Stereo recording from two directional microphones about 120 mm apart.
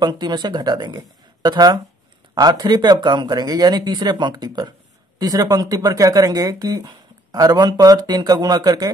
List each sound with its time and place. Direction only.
0.0 s speech: 35° right (ahead or behind)